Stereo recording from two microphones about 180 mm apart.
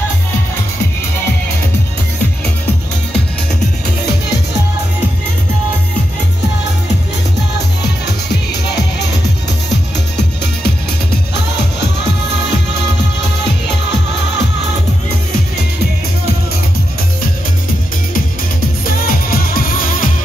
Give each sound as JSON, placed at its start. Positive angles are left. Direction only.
{"t": 10.1, "sound": "music", "side_deg": 70}
{"t": 19.0, "sound": "music", "side_deg": 50}